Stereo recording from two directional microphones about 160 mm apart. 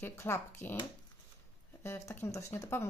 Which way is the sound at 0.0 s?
15° left (ahead or behind).